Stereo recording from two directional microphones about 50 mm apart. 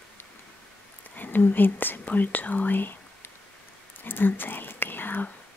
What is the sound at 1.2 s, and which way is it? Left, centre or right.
Speech, left.